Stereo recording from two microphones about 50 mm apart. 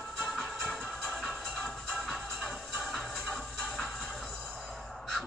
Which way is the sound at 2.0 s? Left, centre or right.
Right.